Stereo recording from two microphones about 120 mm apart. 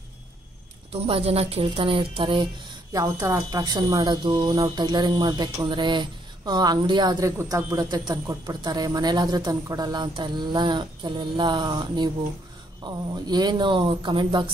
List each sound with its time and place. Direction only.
1.0 s speech: 50° right (ahead or behind)
2.9 s speech: 30° right (ahead or behind)